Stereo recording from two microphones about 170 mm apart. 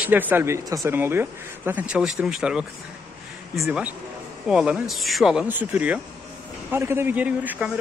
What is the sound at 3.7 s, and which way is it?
Speech, 5° right (ahead or behind).